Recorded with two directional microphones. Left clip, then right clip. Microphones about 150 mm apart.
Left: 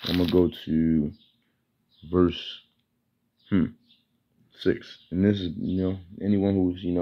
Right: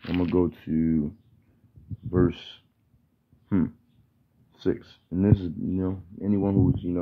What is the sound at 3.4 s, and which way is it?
Speech, 5° right (ahead or behind).